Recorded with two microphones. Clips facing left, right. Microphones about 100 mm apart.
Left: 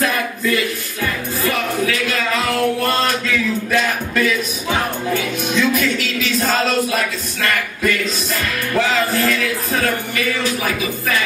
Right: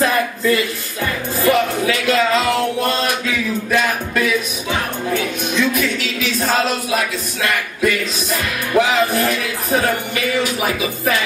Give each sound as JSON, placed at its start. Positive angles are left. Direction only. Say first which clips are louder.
{"t": 1.4, "sound": "music", "louder": "right 4 dB", "side_deg": -20}
{"t": 3.7, "sound": "music", "louder": "right 2 dB", "side_deg": -5}
{"t": 5.1, "sound": "a sound", "louder": "right 1 dB", "side_deg": 0}
{"t": 8.7, "sound": "music", "louder": "right 3 dB", "side_deg": -15}